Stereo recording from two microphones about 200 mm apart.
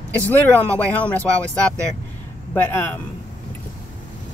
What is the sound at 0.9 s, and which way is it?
Speech, 5° left (ahead or behind).